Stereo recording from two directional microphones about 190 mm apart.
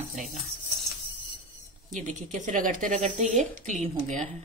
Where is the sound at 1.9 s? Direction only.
40° right (ahead or behind).